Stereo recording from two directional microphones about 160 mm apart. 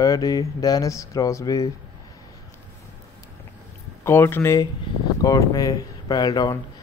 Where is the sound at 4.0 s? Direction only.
15° left (ahead or behind).